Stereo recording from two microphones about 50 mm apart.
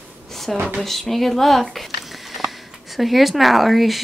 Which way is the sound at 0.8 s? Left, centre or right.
Centre.